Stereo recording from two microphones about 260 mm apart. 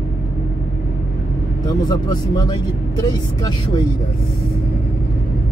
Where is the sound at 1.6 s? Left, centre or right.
Centre.